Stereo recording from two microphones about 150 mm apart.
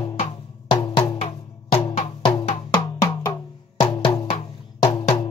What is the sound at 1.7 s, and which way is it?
Music, 35° left (ahead or behind).